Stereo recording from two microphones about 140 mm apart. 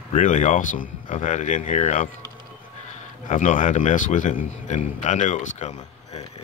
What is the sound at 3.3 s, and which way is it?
A man's voice, 65° left (ahead or behind).